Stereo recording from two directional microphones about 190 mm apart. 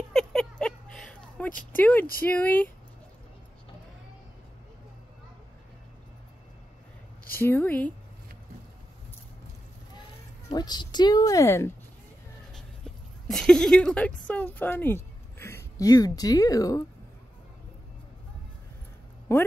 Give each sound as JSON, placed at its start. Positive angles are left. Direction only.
{"t": 0.1, "sound": "a sound", "side_deg": 5}
{"t": 1.5, "sound": "speech", "side_deg": 45}
{"t": 1.8, "sound": "speech", "side_deg": 10}
{"t": 7.3, "sound": "speech", "side_deg": 10}
{"t": 10.5, "sound": "speech", "side_deg": 20}
{"t": 12.5, "sound": "speech", "side_deg": 0}
{"t": 19.3, "sound": "speech", "side_deg": 15}